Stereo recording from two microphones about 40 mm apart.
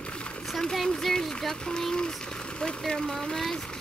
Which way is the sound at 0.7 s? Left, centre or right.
Centre.